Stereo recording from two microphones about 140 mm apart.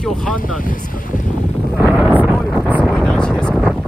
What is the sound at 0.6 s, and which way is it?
Speech, 75° left (ahead or behind).